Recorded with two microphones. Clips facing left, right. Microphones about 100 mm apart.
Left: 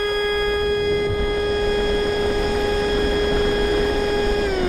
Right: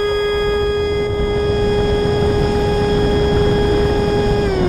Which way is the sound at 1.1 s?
35° right (ahead or behind).